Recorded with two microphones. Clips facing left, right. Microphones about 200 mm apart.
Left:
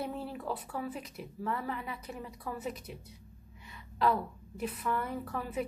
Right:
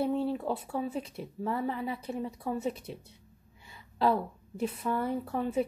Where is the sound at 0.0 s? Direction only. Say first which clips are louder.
Right 8 dB; 30° right (ahead or behind).